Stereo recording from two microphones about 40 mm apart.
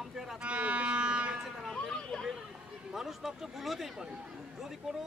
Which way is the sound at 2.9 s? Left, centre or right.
Centre.